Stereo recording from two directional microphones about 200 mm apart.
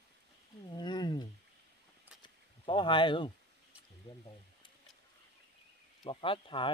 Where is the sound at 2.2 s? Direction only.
25° left (ahead or behind).